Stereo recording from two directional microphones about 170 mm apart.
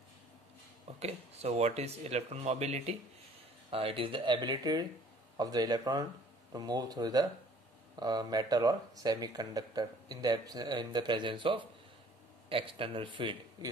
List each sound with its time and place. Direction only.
0.9 s speech: 40° right (ahead or behind)